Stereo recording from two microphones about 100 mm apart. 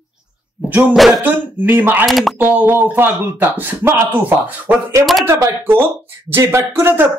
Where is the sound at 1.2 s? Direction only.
20° right (ahead or behind).